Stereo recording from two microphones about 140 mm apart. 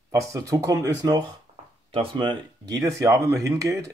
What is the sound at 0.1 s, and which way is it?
Speech, 25° right (ahead or behind).